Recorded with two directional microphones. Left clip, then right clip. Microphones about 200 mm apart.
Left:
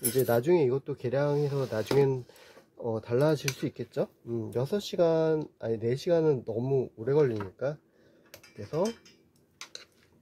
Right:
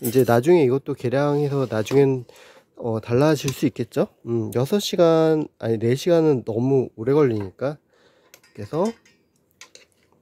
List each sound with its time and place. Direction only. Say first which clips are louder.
0.1 s speech: right 9 dB; 35° right (ahead or behind)